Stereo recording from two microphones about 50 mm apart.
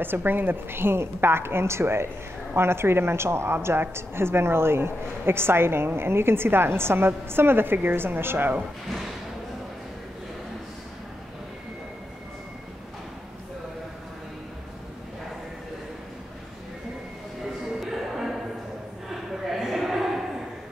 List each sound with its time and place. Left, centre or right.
0.0 s a woman's voice: right
17.7 s music: centre
19.5 s a sound: centre